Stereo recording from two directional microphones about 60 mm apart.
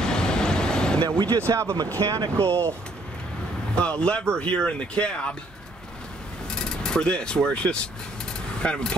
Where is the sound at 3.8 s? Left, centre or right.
Centre.